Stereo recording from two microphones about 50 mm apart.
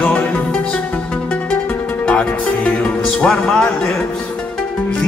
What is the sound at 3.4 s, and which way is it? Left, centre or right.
Speech, centre.